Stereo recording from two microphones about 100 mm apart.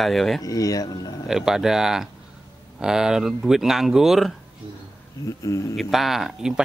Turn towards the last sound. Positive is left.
turn(degrees=-5)  # may be behind; listen again after turning